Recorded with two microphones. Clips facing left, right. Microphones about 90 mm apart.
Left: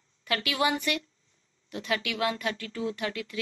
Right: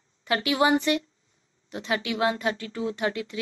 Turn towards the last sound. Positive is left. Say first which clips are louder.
# right 4 dB
turn(degrees=-25)  # may be behind; listen again after turning